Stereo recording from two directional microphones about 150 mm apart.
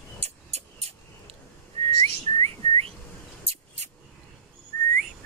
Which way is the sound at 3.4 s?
45° right (ahead or behind).